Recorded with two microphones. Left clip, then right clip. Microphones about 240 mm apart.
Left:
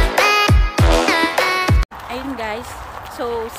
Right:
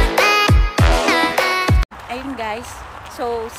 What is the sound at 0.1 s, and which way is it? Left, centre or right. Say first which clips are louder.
Music: even; centre.